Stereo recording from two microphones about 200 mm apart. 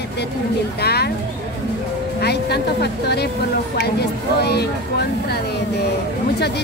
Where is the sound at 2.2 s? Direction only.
55° left (ahead or behind).